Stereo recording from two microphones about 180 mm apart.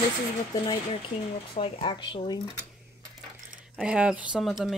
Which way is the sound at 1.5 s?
30° left (ahead or behind).